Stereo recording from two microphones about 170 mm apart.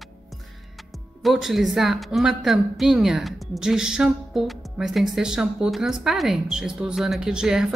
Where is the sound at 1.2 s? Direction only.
Centre (ahead or behind).